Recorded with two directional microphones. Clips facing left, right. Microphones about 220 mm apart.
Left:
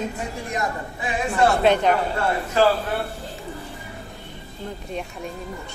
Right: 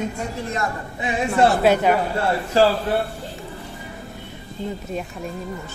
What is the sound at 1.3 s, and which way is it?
Speech, centre (ahead or behind).